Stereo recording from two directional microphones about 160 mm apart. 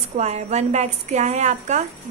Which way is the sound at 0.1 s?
45° right (ahead or behind).